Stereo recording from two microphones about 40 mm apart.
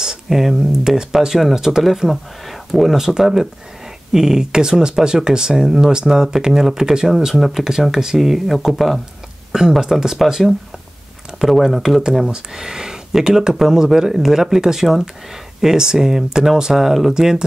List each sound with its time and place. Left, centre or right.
0.3 s speech: centre
1.8 s speech: centre
7.3 s speech: centre
9.5 s speech: centre
12.3 s speech: centre